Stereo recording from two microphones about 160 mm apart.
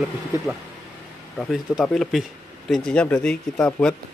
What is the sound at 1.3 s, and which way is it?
Speech, 5° left (ahead or behind).